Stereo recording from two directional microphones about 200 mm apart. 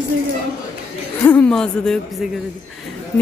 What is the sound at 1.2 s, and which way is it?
Speech, 10° left (ahead or behind).